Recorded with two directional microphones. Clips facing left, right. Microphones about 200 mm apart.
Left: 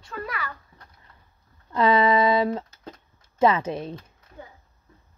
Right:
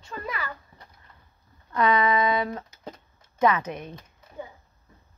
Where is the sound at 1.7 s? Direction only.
30° left (ahead or behind).